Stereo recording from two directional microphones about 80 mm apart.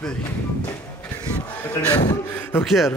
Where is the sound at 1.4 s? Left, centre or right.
Centre.